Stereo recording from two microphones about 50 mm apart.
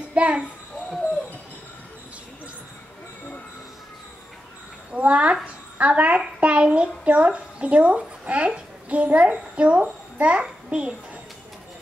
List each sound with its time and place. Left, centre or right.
0.1 s a child's voice: right
4.9 s a sound: right
8.3 s a child's voice: right